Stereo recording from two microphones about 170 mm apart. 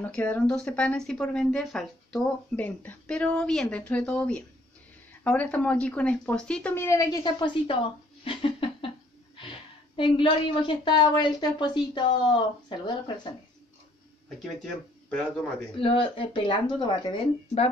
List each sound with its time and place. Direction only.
0.0 s speech: 10° left (ahead or behind); by 7.7 s 30° left (ahead or behind)
8.2 s a sound: 30° left (ahead or behind)
9.9 s a woman's voice: 30° left (ahead or behind)
14.4 s speech: 5° left (ahead or behind)
15.7 s speech: 30° left (ahead or behind)